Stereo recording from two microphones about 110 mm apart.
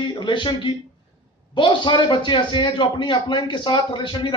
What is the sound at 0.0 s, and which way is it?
A man's voice, 45° left (ahead or behind).